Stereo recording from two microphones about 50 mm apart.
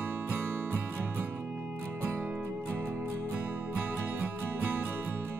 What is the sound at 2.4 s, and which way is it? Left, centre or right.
Music, right.